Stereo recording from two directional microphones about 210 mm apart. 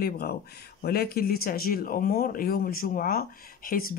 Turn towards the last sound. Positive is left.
turn(degrees=45)  # may be behind; listen again after turning